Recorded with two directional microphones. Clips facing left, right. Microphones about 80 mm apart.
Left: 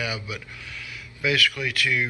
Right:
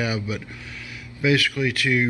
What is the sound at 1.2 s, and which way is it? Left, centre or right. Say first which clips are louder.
Speech: right 4 dB; right.